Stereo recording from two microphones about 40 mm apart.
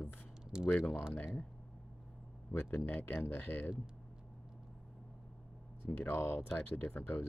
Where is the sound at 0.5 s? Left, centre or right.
Centre.